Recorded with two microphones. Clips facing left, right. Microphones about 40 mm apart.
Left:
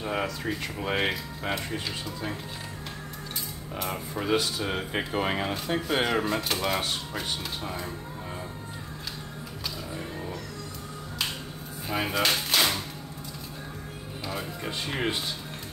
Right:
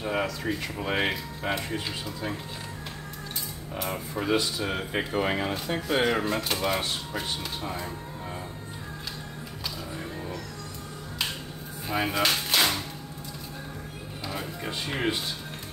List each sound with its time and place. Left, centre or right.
0.0 s speech: centre
3.7 s speech: centre
11.9 s a sound: centre
14.2 s speech: centre